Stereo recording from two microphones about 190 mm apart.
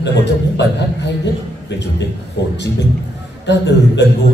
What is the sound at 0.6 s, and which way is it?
A man's voice, 65° left (ahead or behind).